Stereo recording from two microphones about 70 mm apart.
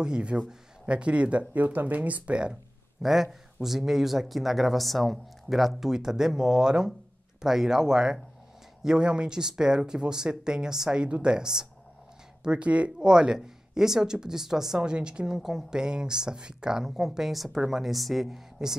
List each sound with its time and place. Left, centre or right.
0.0 s speech: centre
3.0 s speech: centre